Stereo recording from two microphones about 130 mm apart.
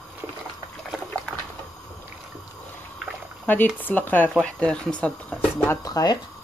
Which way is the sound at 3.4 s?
15° left (ahead or behind).